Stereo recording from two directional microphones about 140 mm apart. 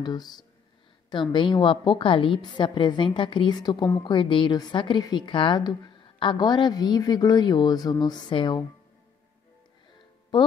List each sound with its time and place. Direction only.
0.0 s a woman's voice: 30° left (ahead or behind)